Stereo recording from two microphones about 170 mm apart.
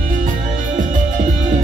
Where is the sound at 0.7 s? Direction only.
50° right (ahead or behind).